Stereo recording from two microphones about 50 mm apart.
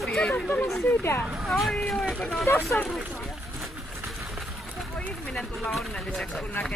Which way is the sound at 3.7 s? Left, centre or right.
Centre.